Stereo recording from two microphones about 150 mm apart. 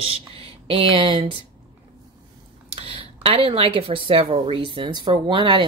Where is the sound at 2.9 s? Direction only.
40° right (ahead or behind).